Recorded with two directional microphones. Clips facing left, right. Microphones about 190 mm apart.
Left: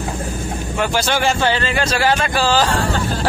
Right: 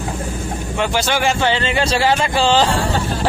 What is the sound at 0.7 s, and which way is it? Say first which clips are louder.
Speech: even; 15° right (ahead or behind).